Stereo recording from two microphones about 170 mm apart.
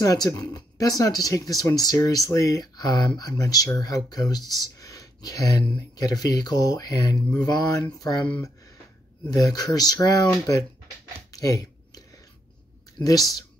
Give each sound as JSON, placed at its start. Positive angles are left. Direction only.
{"t": 0.0, "sound": "speech", "side_deg": 20}
{"t": 11.3, "sound": "a sound", "side_deg": 20}
{"t": 13.0, "sound": "speech", "side_deg": 20}